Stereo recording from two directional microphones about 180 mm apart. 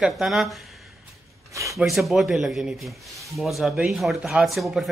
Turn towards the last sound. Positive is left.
turn(degrees=0)  # may be behind; listen again after turning